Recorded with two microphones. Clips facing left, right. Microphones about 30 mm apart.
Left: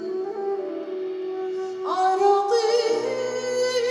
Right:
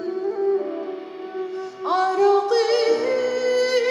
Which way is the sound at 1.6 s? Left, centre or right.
Right.